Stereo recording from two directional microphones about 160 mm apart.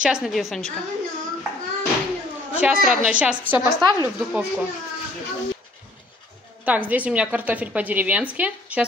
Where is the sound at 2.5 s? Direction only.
10° right (ahead or behind).